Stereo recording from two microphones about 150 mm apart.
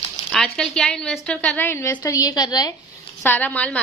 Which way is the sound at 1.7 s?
15° left (ahead or behind).